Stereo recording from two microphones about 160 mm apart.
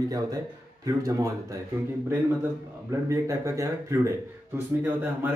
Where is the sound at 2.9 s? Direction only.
15° right (ahead or behind).